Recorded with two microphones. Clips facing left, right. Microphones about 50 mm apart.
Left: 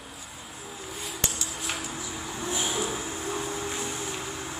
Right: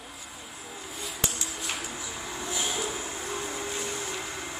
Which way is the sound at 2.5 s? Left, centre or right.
Left.